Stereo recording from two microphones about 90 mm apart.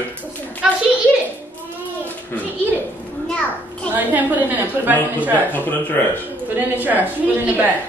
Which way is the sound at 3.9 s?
20° right (ahead or behind).